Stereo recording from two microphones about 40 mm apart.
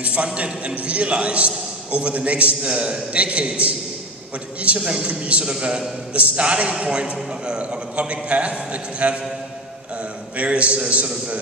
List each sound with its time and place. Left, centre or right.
0.0 s a man's voice: right
4.8 s a man's voice: right
10.3 s a man's voice: right